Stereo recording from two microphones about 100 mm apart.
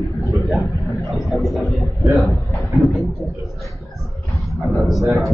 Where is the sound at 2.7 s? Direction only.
Centre (ahead or behind).